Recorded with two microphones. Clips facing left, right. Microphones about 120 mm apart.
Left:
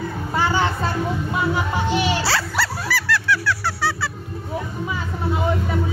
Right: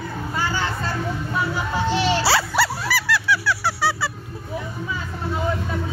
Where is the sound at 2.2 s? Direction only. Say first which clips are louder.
Right 3 dB; 10° right (ahead or behind).